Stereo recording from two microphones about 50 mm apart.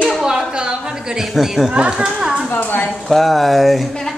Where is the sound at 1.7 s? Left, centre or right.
Centre.